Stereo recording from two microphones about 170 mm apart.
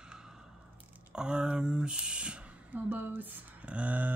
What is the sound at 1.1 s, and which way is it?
Speech, 5° right (ahead or behind).